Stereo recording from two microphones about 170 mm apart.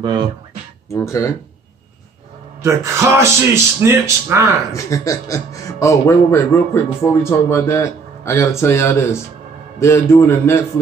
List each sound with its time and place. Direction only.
0.0 s speech: 25° right (ahead or behind)
0.9 s a man's voice: 20° left (ahead or behind)
2.6 s speech: 15° right (ahead or behind)
4.7 s a man's voice: 20° left (ahead or behind)